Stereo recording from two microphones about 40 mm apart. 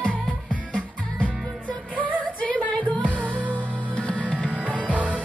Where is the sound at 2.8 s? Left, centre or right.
Right.